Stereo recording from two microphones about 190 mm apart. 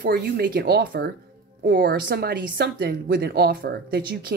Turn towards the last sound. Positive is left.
turn(degrees=-55)  # may be behind; listen again after turning